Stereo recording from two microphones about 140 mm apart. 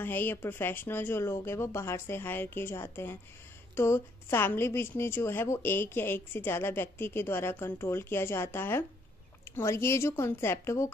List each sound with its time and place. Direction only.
0.0 s a woman's voice: 15° left (ahead or behind)